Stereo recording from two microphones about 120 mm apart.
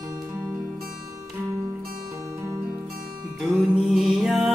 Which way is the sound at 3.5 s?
Centre (ahead or behind).